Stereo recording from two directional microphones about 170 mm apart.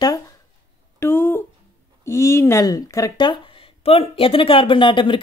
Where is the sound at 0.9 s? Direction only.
15° left (ahead or behind).